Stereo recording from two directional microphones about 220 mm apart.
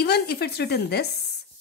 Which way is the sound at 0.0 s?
50° left (ahead or behind).